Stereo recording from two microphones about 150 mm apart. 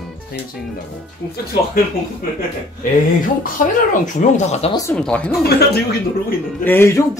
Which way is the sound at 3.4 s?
65° left (ahead or behind).